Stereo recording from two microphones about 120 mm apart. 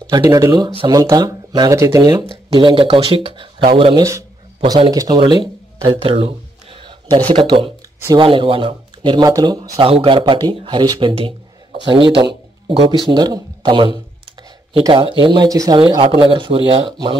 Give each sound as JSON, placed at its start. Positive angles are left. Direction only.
{"t": 0.1, "sound": "speech", "side_deg": -30}
{"t": 2.2, "sound": "speech", "side_deg": -45}
{"t": 4.9, "sound": "speech", "side_deg": -30}
{"t": 5.2, "sound": "a sound", "side_deg": -45}
{"t": 7.2, "sound": "speech", "side_deg": -45}
{"t": 9.6, "sound": "speech", "side_deg": -50}
{"t": 15.8, "sound": "speech", "side_deg": -50}